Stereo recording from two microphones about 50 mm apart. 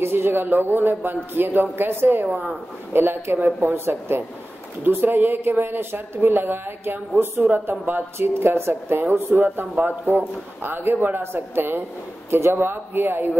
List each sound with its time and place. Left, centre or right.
0.0 s a woman's voice: right
2.2 s speech: right
2.9 s a woman's voice: right
4.8 s a woman's voice: right
7.7 s speech: right
8.2 s a woman's voice: right
9.6 s a woman's voice: right